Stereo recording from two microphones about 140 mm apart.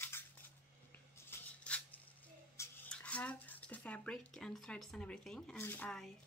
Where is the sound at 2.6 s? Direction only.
20° left (ahead or behind).